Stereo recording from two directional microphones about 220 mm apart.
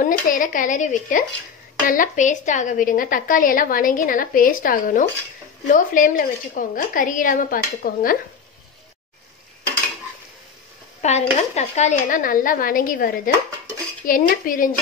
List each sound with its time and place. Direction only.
0.0 s a woman's voice: 40° left (ahead or behind)
11.0 s a woman's voice: 30° left (ahead or behind)